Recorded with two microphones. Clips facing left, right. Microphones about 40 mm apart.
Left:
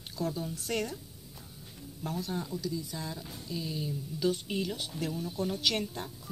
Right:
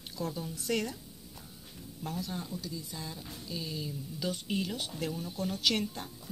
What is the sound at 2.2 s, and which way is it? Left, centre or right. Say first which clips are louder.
Speech: left 4 dB; left.